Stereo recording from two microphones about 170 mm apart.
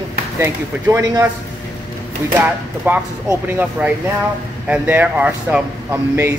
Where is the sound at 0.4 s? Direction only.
15° right (ahead or behind).